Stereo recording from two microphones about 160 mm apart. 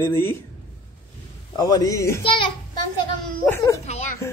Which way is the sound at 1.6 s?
25° left (ahead or behind).